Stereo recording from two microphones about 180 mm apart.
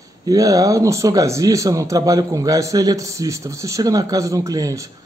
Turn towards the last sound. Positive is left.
turn(degrees=-20)  # may be behind; listen again after turning